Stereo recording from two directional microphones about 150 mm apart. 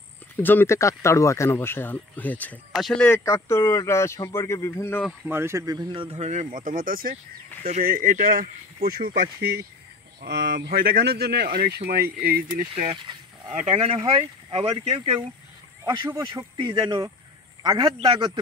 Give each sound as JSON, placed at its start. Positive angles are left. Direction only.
{"t": 0.4, "sound": "speech", "side_deg": 15}
{"t": 3.3, "sound": "speech", "side_deg": 20}
{"t": 5.2, "sound": "speech", "side_deg": -15}
{"t": 5.9, "sound": "speech", "side_deg": -45}
{"t": 8.8, "sound": "speech", "side_deg": -90}
{"t": 10.5, "sound": "speech", "side_deg": -80}
{"t": 12.7, "sound": "speech", "side_deg": -35}
{"t": 15.8, "sound": "speech", "side_deg": -30}